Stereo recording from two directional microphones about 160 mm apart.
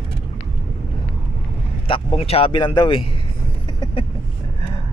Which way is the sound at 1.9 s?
35° left (ahead or behind).